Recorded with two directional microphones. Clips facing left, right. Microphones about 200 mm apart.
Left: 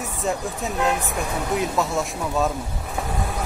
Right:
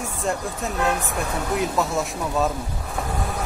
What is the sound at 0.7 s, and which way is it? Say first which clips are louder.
Speech: left 1 dB; 15° left (ahead or behind).